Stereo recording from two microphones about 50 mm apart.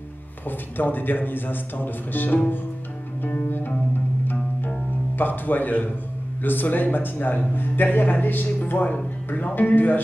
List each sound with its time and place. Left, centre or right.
0.5 s speech: left
3.4 s music: left
6.4 s speech: left